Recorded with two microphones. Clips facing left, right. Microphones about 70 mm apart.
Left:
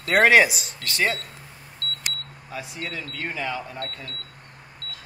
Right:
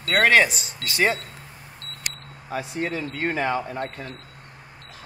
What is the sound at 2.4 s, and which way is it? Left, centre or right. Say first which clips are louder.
Speech: right 6 dB; right.